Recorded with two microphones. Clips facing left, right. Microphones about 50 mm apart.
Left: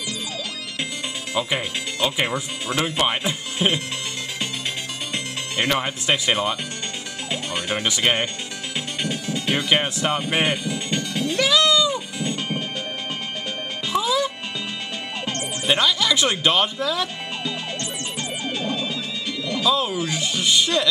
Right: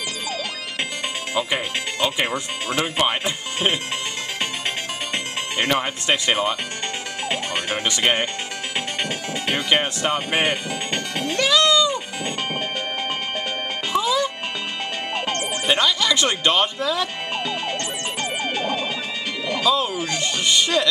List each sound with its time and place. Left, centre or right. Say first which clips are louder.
1.3 s speech: even; centre
2.3 s speech: right 1 dB; centre
5.7 s speech: even; centre
8.0 s speech: right 1 dB; centre
9.0 s speech: even; right
9.7 s speech: right 2 dB; centre
10.5 s speech: even; right
11.3 s music: right 1 dB; centre
12.2 s music: even; right
13.9 s music: right 1 dB; centre
15.6 s speech: even; centre
18.4 s music: right 1 dB; right
19.6 s speech: even; centre